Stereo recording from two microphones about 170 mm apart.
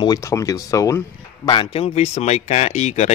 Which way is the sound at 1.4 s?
30° left (ahead or behind).